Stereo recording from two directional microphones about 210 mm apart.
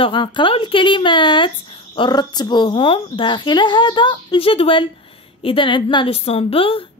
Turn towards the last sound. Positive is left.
turn(degrees=25)  # may be behind; listen again after turning